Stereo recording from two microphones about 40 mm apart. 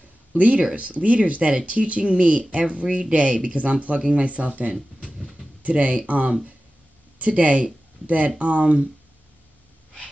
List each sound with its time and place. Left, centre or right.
0.3 s speech: right